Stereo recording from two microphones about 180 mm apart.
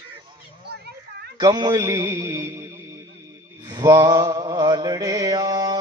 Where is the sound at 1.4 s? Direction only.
20° right (ahead or behind).